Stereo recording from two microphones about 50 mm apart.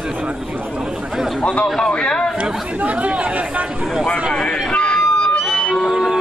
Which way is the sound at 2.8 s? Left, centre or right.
Right.